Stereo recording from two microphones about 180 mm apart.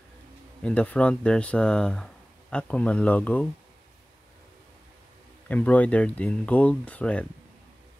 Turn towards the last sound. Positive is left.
turn(degrees=5)  # may be behind; listen again after turning